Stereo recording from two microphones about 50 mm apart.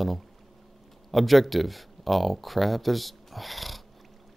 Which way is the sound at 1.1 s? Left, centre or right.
Centre.